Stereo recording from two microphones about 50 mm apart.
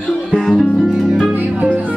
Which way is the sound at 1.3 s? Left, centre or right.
Right.